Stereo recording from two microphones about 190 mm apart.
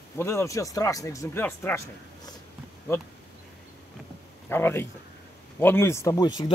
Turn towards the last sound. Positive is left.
turn(degrees=20)  # may be behind; listen again after turning